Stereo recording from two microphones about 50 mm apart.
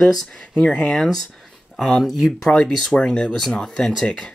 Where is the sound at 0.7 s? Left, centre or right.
Centre.